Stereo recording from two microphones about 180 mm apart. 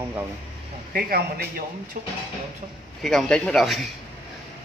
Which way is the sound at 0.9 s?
60° right (ahead or behind).